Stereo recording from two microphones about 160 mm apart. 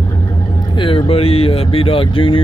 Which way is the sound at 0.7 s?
35° left (ahead or behind).